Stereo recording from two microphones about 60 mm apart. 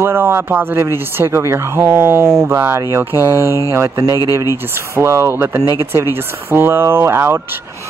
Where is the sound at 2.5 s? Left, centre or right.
Right.